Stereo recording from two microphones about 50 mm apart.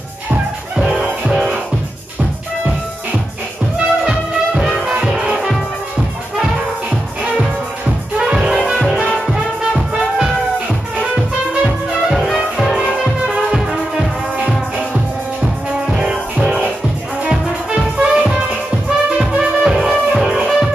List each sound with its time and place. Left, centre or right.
0.7 s music: centre
3.7 s music: centre
8.2 s music: centre
12.1 s music: centre; by 14.5 s right
17.6 s music: centre
19.6 s music: centre